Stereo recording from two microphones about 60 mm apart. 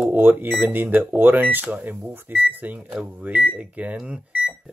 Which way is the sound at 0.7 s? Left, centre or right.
Right.